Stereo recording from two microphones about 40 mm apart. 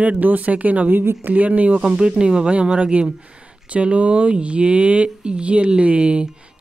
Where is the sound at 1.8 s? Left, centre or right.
Right.